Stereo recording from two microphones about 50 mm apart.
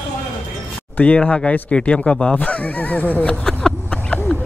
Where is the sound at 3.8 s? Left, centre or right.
Left.